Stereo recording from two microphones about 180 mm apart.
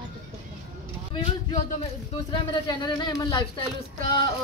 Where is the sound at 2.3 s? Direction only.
25° left (ahead or behind).